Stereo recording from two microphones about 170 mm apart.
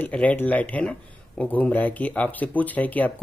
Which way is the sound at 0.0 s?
10° left (ahead or behind).